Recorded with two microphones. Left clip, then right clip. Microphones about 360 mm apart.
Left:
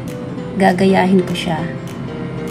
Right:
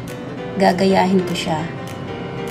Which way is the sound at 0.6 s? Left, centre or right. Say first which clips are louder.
Left 2 dB; centre.